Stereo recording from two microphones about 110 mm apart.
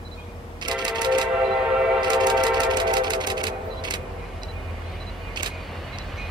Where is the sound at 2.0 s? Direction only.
40° right (ahead or behind).